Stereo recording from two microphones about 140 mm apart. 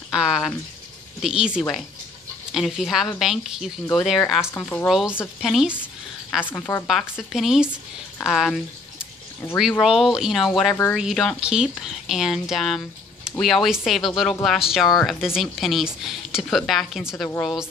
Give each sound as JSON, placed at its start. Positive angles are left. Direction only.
{"t": 0.1, "sound": "speech", "side_deg": -5}
{"t": 4.6, "sound": "speech", "side_deg": 15}
{"t": 4.8, "sound": "speech", "side_deg": -5}
{"t": 6.5, "sound": "speech", "side_deg": 15}
{"t": 6.9, "sound": "speech", "side_deg": 0}
{"t": 8.9, "sound": "a sound", "side_deg": 15}
{"t": 9.6, "sound": "speech", "side_deg": 0}